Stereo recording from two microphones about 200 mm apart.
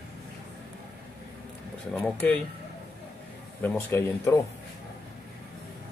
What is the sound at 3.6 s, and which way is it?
Speech, 10° left (ahead or behind).